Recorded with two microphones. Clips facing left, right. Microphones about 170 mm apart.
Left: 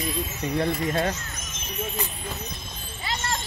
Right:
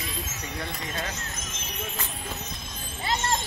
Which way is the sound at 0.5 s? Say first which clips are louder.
Left 11 dB; 40° left (ahead or behind).